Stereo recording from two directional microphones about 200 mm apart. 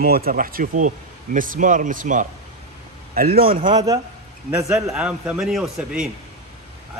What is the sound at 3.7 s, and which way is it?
A man's voice, 20° right (ahead or behind).